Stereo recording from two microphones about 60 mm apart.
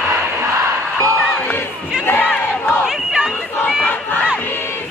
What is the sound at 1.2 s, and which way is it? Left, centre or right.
Crowd, left.